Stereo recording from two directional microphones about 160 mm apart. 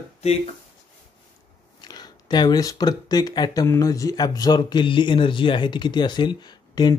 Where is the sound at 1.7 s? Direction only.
25° left (ahead or behind).